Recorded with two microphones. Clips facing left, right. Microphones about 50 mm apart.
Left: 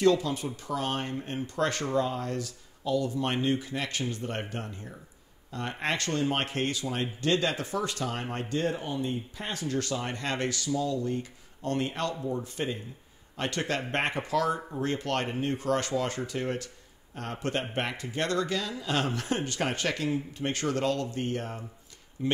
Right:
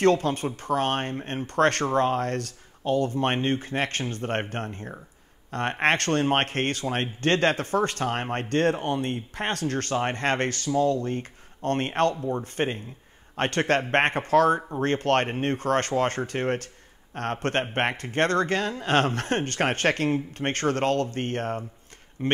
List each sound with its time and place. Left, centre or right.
0.0 s speech: right